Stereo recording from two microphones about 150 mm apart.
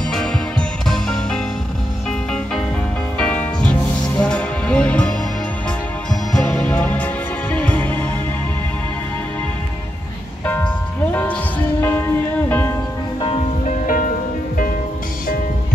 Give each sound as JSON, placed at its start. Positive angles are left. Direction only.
{"t": 0.1, "sound": "music", "side_deg": 5}
{"t": 3.2, "sound": "music", "side_deg": 10}
{"t": 6.3, "sound": "music", "side_deg": 5}
{"t": 10.4, "sound": "music", "side_deg": 10}
{"t": 11.8, "sound": "music", "side_deg": 15}
{"t": 13.2, "sound": "music", "side_deg": 40}
{"t": 13.7, "sound": "music", "side_deg": 65}